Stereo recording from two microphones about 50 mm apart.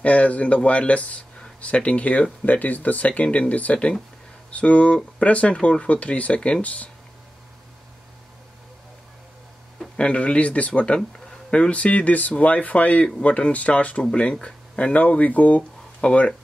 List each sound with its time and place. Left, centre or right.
0.0 s speech: left
9.9 s speech: left